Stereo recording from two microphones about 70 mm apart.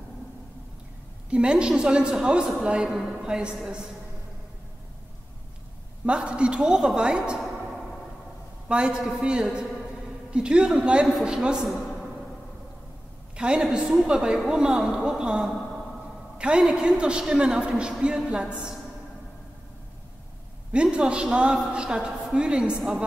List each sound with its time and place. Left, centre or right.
1.3 s a woman's voice: centre
6.0 s a woman's voice: centre
8.6 s a man's voice: centre
13.4 s a woman's voice: centre
20.7 s a woman's voice: centre